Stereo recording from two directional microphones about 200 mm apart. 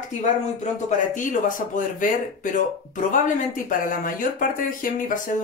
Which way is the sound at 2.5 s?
40° left (ahead or behind).